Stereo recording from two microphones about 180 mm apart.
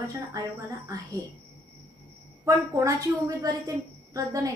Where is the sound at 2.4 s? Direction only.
15° right (ahead or behind).